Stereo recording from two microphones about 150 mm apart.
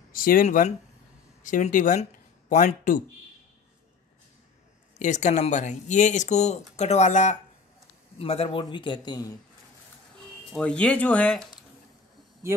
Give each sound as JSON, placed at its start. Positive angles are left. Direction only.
{"t": 0.1, "sound": "speech", "side_deg": 70}
{"t": 4.9, "sound": "speech", "side_deg": 55}
{"t": 8.2, "sound": "a man's voice", "side_deg": 40}
{"t": 10.5, "sound": "speech", "side_deg": 10}
{"t": 12.4, "sound": "speech", "side_deg": -20}